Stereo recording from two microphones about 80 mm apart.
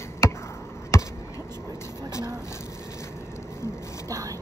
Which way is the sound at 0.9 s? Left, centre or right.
Left.